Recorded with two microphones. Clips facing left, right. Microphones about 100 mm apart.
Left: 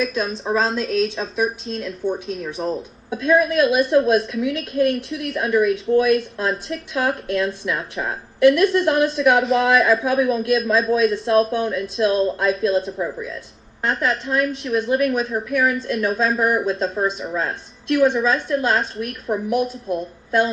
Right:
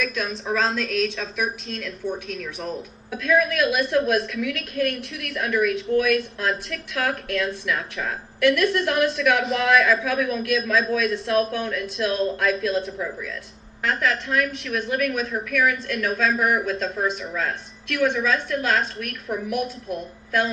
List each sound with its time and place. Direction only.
0.0 s a woman's voice: 30° left (ahead or behind)